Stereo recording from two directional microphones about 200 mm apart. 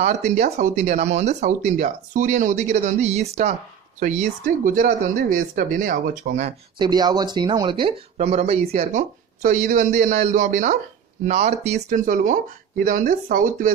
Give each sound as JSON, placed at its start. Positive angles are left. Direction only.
{"t": 0.0, "sound": "speech", "side_deg": -35}
{"t": 6.8, "sound": "speech", "side_deg": -20}